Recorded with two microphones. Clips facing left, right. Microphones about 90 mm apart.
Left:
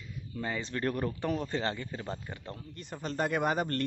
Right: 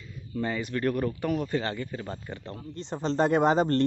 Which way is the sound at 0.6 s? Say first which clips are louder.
Right 4 dB; 25° left (ahead or behind).